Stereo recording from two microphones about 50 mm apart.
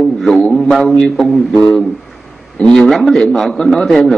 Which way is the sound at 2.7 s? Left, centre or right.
Centre.